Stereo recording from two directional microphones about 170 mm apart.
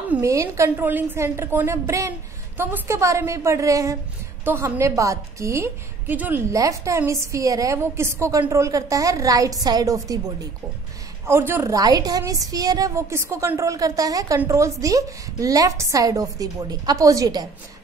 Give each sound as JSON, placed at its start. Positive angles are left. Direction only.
{"t": 0.1, "sound": "a woman's voice", "side_deg": -20}
{"t": 11.2, "sound": "a woman's voice", "side_deg": -15}